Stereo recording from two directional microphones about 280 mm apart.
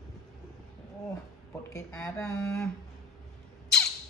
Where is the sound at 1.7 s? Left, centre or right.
Centre.